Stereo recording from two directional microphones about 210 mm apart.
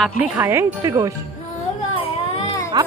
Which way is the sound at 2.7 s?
20° right (ahead or behind).